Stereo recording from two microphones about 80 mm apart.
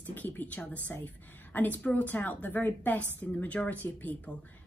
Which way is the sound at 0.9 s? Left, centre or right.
Left.